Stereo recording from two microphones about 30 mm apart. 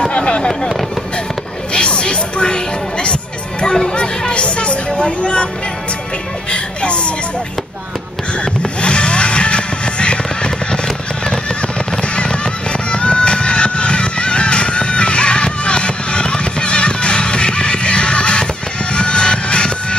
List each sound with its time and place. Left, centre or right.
0.1 s a sound: left
1.7 s music: left
4.3 s music: left
6.5 s music: left
8.8 s music: left
12.0 s fireworks: left
12.9 s music: left